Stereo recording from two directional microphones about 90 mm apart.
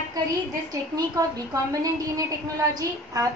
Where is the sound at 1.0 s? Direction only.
45° right (ahead or behind).